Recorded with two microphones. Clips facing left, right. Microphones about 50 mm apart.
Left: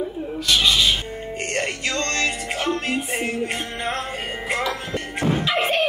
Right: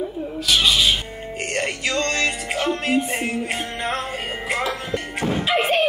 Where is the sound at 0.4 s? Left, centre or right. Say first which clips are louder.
Even; centre.